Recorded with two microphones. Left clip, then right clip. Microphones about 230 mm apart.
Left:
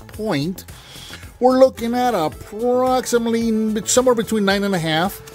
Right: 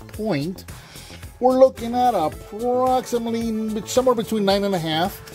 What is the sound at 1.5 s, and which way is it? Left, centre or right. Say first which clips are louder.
Speech: right 1 dB; centre.